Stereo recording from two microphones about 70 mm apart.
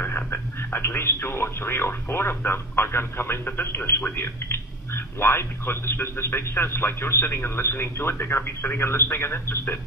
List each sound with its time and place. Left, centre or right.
0.0 s speech: left